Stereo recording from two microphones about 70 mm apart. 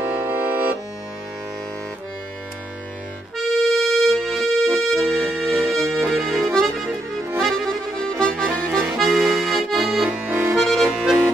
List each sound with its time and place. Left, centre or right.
0.0 s accordion: right
3.3 s music: centre
6.1 s accordion: centre
8.7 s accordion: centre
9.8 s accordion: centre
10.5 s accordion: centre